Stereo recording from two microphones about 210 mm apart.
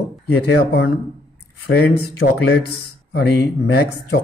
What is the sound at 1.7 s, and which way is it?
Speech, 50° left (ahead or behind).